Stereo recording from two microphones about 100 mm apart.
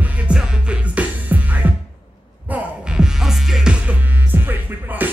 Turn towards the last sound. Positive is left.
turn(degrees=-20)  # may be behind; listen again after turning